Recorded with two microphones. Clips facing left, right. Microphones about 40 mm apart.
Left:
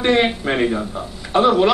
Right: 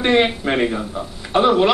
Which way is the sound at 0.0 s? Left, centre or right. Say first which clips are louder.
Even; centre.